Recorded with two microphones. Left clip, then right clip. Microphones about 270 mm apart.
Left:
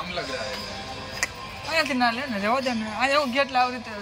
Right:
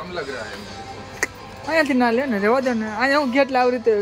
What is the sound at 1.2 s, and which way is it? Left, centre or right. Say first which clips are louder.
Speech: right 4 dB; centre.